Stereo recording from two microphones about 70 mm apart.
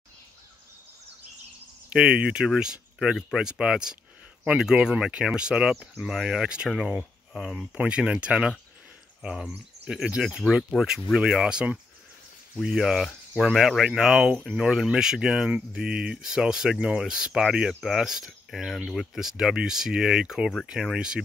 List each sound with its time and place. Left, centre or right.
1.9 s speech: centre
12.6 s speech: centre